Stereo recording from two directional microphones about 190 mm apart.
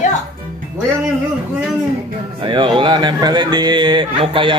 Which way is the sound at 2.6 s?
25° right (ahead or behind).